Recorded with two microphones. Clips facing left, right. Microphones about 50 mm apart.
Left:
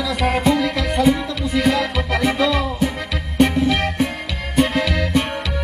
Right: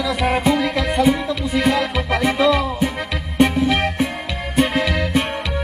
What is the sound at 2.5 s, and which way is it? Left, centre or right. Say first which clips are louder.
Music: right 2 dB; right.